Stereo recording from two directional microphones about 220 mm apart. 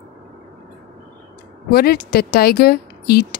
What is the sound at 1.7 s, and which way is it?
Speech, 45° left (ahead or behind).